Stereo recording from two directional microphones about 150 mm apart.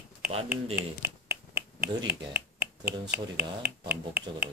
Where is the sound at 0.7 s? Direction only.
10° right (ahead or behind).